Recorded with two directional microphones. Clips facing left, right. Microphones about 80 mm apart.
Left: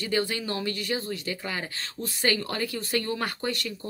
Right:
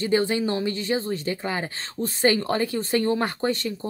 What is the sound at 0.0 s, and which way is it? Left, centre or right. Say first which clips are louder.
Speech: right 6 dB; right.